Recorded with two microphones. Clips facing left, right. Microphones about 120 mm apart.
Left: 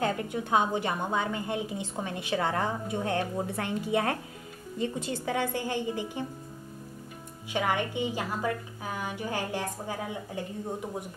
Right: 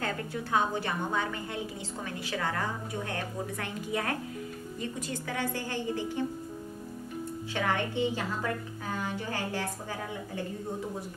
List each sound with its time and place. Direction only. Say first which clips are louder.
0.0 s a woman's voice: left 4 dB; 20° left (ahead or behind)
7.5 s a woman's voice: left 2 dB; 15° left (ahead or behind)